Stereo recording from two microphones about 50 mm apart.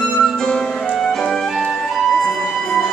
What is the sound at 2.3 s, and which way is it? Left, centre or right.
Music, centre.